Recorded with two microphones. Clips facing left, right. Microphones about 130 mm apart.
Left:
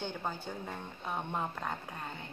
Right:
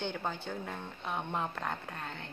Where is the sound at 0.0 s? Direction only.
5° left (ahead or behind).